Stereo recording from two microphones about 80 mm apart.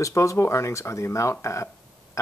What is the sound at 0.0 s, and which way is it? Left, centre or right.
Speech, left.